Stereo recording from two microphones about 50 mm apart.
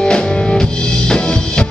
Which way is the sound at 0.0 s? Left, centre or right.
Centre.